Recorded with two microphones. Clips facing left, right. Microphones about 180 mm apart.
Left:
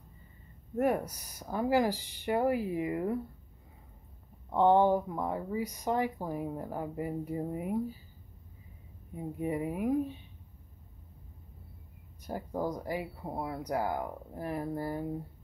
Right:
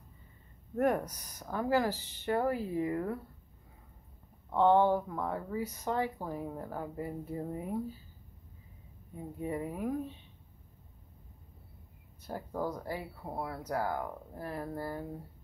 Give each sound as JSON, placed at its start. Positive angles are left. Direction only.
{"t": 0.7, "sound": "speech", "side_deg": 5}
{"t": 4.5, "sound": "speech", "side_deg": 15}
{"t": 9.1, "sound": "speech", "side_deg": 10}
{"t": 12.3, "sound": "speech", "side_deg": 15}